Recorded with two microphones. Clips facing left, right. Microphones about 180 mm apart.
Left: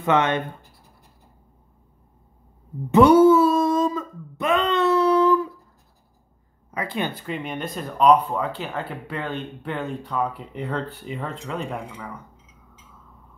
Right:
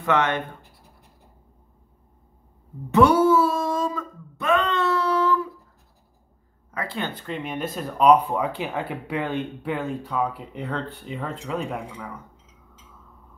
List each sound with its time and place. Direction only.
0.0 s speech: 20° left (ahead or behind)
2.9 s a sound: 20° left (ahead or behind)
6.7 s speech: 15° left (ahead or behind)
7.2 s speech: centre (ahead or behind)